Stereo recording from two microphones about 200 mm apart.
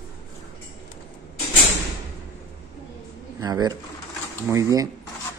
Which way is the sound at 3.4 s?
20° right (ahead or behind).